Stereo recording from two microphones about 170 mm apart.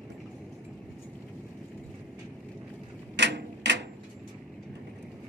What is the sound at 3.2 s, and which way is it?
Tick-tock, 90° right.